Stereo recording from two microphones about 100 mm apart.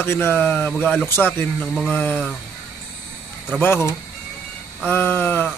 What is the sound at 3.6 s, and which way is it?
Speech, 25° left (ahead or behind).